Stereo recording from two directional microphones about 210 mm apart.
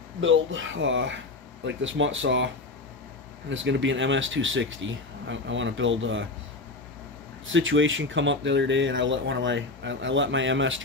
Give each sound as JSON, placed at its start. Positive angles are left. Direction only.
{"t": 0.2, "sound": "speech", "side_deg": -65}
{"t": 7.4, "sound": "speech", "side_deg": -65}